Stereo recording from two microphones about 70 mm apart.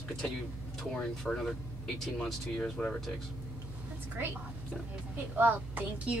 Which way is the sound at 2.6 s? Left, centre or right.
Centre.